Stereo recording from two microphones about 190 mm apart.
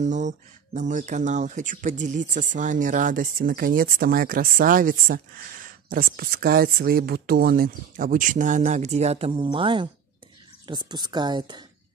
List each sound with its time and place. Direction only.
0.0 s speech: 40° right (ahead or behind); by 11.6 s 25° right (ahead or behind)